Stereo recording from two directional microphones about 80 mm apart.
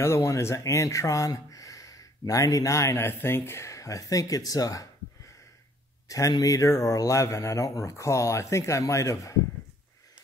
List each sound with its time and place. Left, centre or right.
0.0 s speech: left
6.0 s speech: left